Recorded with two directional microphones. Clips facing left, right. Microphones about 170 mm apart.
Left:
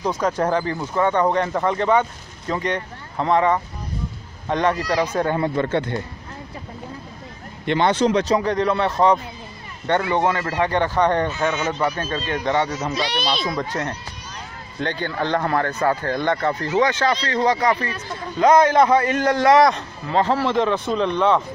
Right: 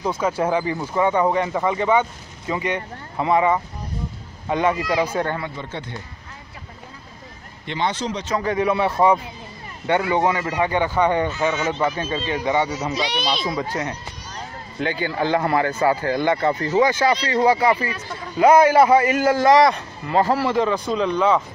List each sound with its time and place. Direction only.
0.0 s a man's voice: 5° right (ahead or behind)
5.6 s speech: 65° left (ahead or behind)
7.6 s speech: 60° left (ahead or behind)
8.4 s a man's voice: 5° right (ahead or behind)
14.8 s a man's voice: 5° right (ahead or behind)